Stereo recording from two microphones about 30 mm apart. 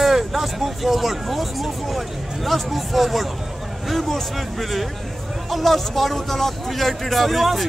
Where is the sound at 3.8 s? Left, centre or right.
Centre.